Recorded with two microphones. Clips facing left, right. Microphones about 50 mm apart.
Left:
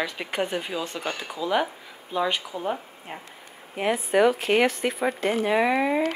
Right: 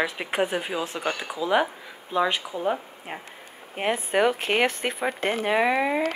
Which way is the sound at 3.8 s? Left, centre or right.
Right.